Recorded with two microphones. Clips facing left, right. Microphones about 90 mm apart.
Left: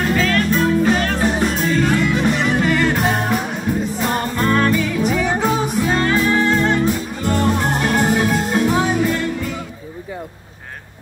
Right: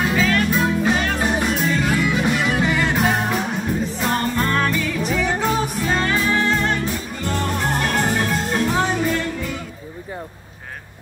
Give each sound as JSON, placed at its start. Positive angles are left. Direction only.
{"t": 0.0, "sound": "music", "side_deg": -5}